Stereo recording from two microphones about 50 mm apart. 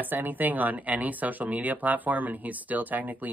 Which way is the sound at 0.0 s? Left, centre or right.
Right.